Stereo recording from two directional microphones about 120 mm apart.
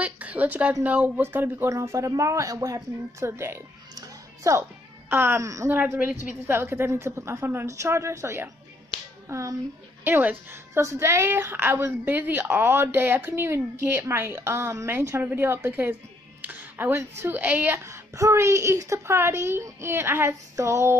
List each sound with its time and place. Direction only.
0.0 s a woman's voice: 10° right (ahead or behind)
3.9 s music: 25° right (ahead or behind)
5.1 s a woman's voice: 20° right (ahead or behind)
5.8 s a woman's voice: 15° right (ahead or behind)